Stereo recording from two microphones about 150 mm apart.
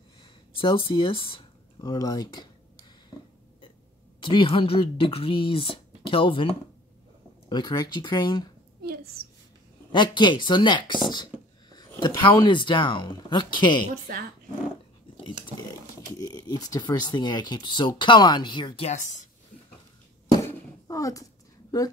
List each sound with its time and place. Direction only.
0.2 s speech: 35° left (ahead or behind)
4.2 s speech: 35° left (ahead or behind)
8.8 s a sound: 90° right
9.9 s speech: 30° left (ahead or behind)
14.1 s speech: 90° right
16.1 s speech: 25° left (ahead or behind)
18.9 s a woman's voice: 55° left (ahead or behind)
20.4 s a sound: 20° left (ahead or behind)